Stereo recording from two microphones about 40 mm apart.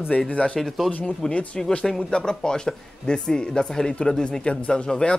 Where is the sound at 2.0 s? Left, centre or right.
Centre.